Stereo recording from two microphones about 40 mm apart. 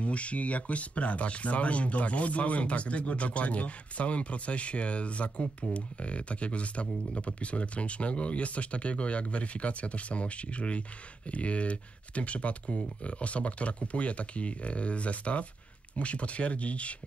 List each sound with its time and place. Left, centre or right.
0.0 s speech: left